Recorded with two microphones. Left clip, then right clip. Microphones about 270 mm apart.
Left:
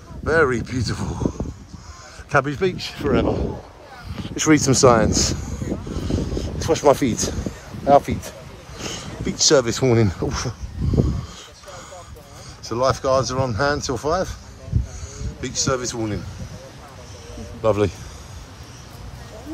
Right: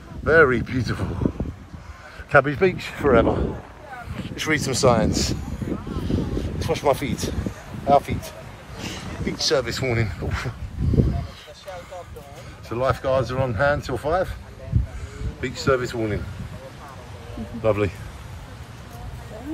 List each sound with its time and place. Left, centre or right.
0.2 s a man's voice: centre
2.3 s a man's voice: centre
4.1 s a sound: left
7.9 s speech: left
12.6 s speech: left
15.4 s a man's voice: centre
17.6 s speech: centre